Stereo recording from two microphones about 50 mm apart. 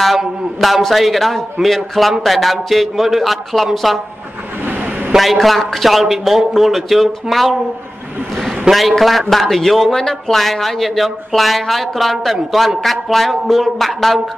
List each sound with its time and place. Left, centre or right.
0.2 s speech: centre
4.6 s vehicle: right
5.1 s speech: centre
8.6 s speech: centre